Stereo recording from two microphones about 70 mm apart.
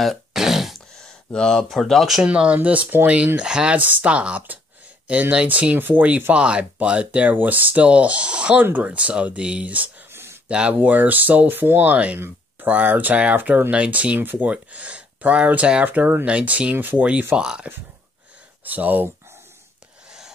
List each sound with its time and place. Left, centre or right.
0.0 s throat clearing: centre
1.3 s speech: centre
2.2 s speech: centre
10.1 s a sound: right
10.5 s speech: centre
16.3 s speech: centre
18.6 s speech: right
20.1 s a sound: centre